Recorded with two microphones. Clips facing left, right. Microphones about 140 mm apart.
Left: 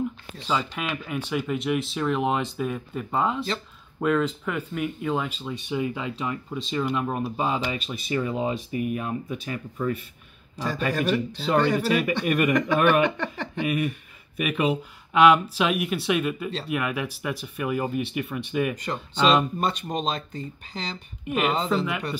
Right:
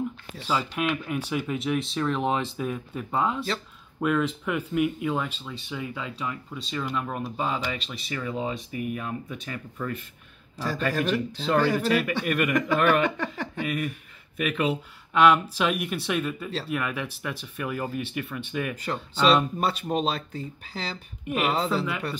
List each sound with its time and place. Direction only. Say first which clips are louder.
0.5 s speech: right 1 dB; 5° right (ahead or behind)
5.0 s speech: left 1 dB; 5° left (ahead or behind)
5.4 s speech: left 7 dB; 15° left (ahead or behind)
10.5 s a man's voice: left 1 dB; 5° right (ahead or behind)
11.5 s speech: left 1 dB; 5° right (ahead or behind)
11.8 s speech: left 1 dB; 15° left (ahead or behind)
13.8 s speech: left 3 dB; 5° left (ahead or behind)
18.8 s speech: left 1 dB; 5° right (ahead or behind)